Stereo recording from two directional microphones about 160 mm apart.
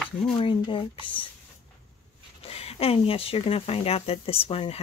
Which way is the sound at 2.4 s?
40° left (ahead or behind).